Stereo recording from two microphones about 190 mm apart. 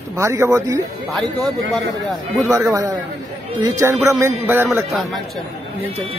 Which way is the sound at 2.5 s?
15° right (ahead or behind).